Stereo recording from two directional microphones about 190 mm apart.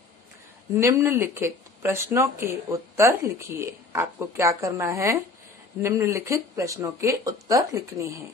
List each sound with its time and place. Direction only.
0.7 s speech: 15° right (ahead or behind)